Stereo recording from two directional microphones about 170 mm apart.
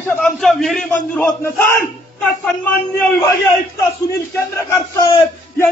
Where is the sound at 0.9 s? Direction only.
15° left (ahead or behind).